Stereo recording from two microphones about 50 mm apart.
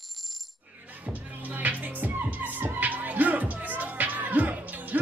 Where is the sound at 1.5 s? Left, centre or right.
Right.